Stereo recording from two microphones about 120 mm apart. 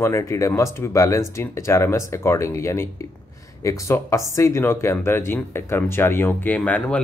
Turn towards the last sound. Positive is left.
turn(degrees=10)  # may be behind; listen again after turning